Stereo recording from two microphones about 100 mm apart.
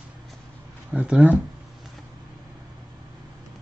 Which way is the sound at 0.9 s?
15° right (ahead or behind).